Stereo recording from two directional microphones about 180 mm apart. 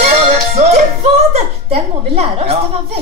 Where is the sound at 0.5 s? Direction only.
40° right (ahead or behind).